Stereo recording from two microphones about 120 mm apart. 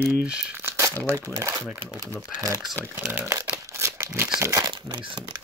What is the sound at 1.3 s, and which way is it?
Speech, 25° right (ahead or behind).